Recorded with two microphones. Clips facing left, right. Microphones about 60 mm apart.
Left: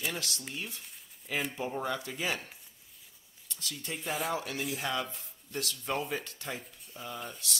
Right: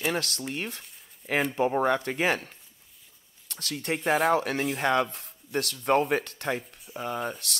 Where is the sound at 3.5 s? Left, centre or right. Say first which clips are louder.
Right 9 dB; right.